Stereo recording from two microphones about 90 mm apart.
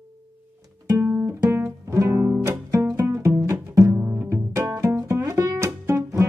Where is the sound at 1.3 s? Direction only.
30° right (ahead or behind).